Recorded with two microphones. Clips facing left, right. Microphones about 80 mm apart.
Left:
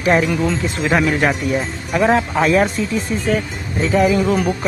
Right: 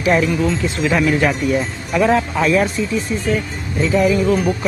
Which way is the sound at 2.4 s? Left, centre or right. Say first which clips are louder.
Left 1 dB; left.